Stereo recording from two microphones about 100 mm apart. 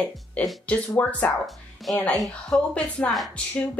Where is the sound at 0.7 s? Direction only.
15° left (ahead or behind).